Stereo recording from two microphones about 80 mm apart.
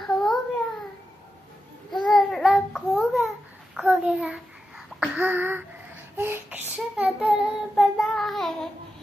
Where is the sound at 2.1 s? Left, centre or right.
Centre.